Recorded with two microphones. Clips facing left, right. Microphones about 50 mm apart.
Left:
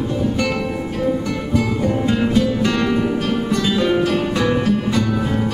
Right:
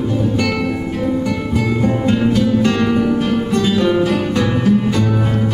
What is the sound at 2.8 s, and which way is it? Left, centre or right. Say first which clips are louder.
Music: right 3 dB; centre.